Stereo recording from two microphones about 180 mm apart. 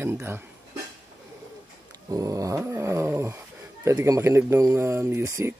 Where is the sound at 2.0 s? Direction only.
20° right (ahead or behind).